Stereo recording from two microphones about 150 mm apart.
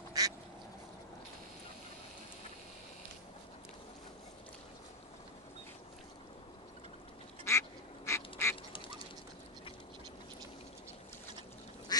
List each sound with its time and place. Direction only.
0.2 s duck: 25° right (ahead or behind)
7.4 s duck: 20° left (ahead or behind)
11.9 s duck: 25° left (ahead or behind)